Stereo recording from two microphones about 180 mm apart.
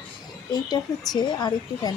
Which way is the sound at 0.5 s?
20° left (ahead or behind).